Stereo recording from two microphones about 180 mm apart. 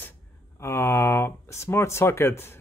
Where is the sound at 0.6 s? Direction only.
15° left (ahead or behind).